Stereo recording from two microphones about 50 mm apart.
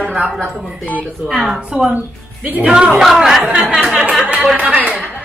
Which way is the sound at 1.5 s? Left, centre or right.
Right.